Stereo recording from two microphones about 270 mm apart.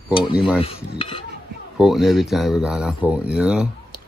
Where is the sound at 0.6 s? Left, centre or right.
Centre.